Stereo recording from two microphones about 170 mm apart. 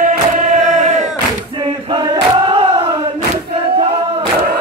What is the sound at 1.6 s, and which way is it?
Battle cry, 25° right (ahead or behind).